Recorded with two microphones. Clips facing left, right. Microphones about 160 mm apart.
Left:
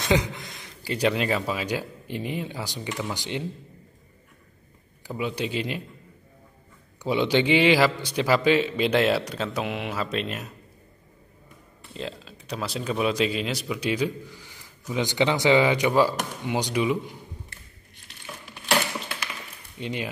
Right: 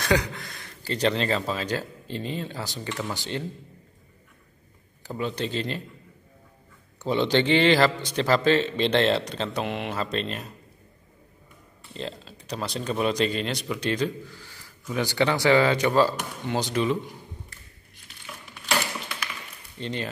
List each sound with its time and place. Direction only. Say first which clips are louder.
0.0 s speech: left 1 dB; 20° left (ahead or behind)
5.0 s speech: even; 10° left (ahead or behind)
7.0 s speech: even; 10° left (ahead or behind)
11.9 s speech: even; 5° left (ahead or behind)
19.8 s speech: even; 10° left (ahead or behind)